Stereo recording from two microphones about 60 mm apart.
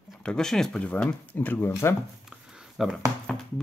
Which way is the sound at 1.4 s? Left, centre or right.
Left.